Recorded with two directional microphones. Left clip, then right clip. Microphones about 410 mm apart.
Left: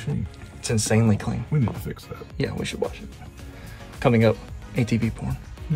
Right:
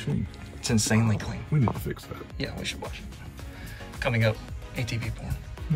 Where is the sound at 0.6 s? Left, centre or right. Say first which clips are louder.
Left 3 dB; centre.